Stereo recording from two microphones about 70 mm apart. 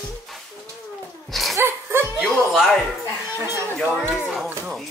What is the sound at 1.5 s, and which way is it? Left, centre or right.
Music, right.